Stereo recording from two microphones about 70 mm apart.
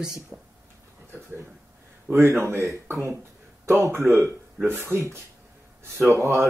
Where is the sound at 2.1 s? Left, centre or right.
Right.